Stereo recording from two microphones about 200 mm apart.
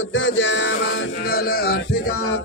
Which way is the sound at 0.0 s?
70° left (ahead or behind).